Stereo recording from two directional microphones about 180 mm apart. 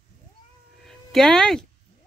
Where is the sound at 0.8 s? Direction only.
Centre (ahead or behind).